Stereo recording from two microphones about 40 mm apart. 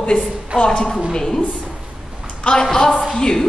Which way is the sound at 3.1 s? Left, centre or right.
Centre.